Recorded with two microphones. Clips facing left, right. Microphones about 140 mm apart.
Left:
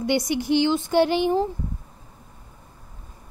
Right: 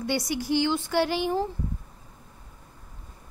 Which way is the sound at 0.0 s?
20° left (ahead or behind).